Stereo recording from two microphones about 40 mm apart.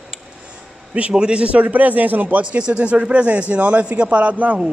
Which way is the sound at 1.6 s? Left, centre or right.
Right.